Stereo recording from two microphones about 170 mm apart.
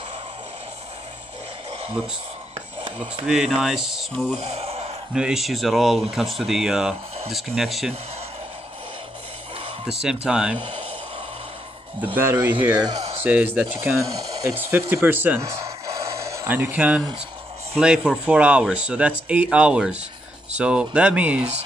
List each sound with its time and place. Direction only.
1.7 s a sound: 35° right (ahead or behind)
3.3 s speech: 5° right (ahead or behind)
4.4 s speech: 35° right (ahead or behind)
5.1 s speech: 5° right (ahead or behind)
10.2 s speech: 5° right (ahead or behind)
10.6 s speech: 30° right (ahead or behind)
12.0 s speech: 10° right (ahead or behind)